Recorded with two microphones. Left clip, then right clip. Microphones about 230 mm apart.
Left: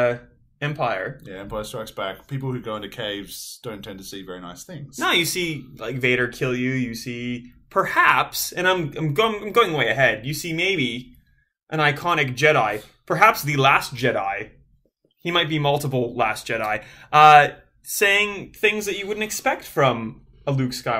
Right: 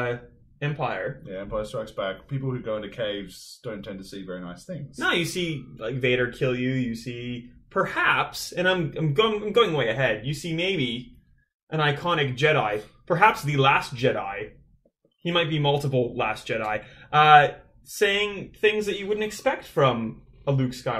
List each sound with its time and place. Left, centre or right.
0.6 s speech: centre
1.3 s speech: left
4.9 s speech: centre